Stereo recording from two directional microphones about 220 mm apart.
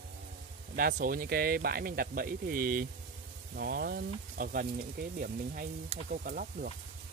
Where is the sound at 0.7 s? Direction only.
40° right (ahead or behind).